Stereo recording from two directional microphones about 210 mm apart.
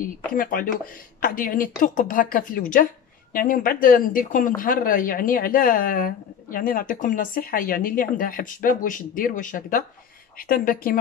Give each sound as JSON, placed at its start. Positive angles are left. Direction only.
{"t": 0.3, "sound": "speech", "side_deg": 40}